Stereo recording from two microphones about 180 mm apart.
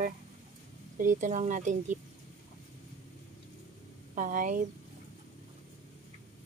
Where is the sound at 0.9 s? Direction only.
45° right (ahead or behind).